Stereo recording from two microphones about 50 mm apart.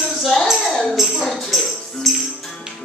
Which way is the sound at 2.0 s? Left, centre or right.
Centre.